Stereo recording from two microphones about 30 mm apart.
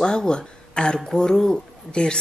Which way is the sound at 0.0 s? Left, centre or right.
Left.